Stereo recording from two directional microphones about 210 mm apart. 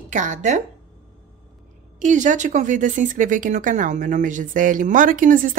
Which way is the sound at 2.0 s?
35° right (ahead or behind).